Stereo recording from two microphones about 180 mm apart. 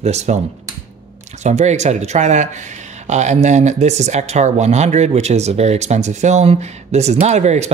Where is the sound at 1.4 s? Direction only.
40° right (ahead or behind).